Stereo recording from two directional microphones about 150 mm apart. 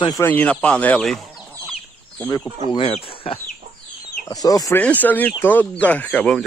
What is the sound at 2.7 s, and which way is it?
Speech, 40° left (ahead or behind).